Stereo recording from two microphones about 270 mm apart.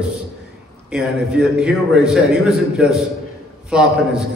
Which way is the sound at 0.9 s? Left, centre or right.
Centre.